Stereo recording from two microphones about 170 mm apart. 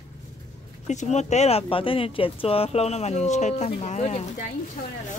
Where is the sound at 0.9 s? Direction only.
45° left (ahead or behind).